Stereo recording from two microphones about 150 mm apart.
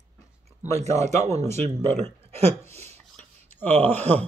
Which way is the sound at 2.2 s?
45° right (ahead or behind).